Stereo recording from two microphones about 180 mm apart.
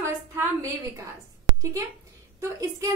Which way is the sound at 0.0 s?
15° right (ahead or behind).